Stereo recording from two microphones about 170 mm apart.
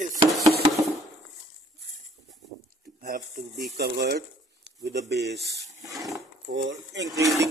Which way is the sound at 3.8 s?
80° right.